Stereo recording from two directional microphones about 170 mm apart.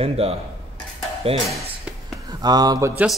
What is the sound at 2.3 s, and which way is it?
Speech, 25° right (ahead or behind).